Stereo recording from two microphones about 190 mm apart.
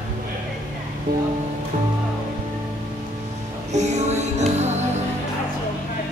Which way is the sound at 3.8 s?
35° right (ahead or behind).